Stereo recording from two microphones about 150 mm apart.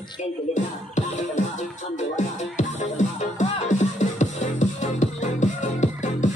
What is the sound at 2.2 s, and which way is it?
Music, 55° left (ahead or behind).